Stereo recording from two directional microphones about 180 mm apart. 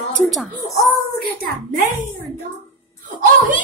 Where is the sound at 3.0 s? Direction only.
45° right (ahead or behind).